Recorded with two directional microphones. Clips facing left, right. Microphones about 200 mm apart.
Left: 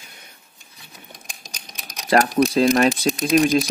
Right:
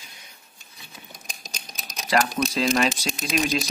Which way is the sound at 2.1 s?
50° left (ahead or behind).